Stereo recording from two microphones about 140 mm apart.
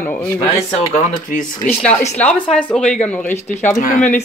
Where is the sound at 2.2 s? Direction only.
10° left (ahead or behind).